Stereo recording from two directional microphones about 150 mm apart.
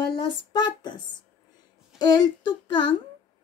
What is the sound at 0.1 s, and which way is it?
Speech, 30° left (ahead or behind).